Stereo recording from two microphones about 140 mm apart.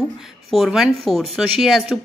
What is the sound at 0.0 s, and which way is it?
A woman's voice, centre (ahead or behind).